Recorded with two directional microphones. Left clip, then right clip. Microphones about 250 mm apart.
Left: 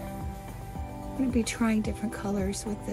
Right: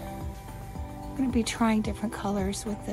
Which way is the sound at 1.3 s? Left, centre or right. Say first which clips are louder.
Right 3 dB; centre.